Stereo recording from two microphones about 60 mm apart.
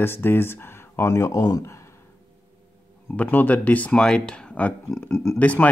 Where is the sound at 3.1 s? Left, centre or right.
Left.